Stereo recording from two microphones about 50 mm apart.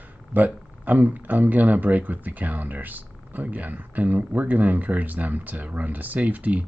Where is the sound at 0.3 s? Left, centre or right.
Right.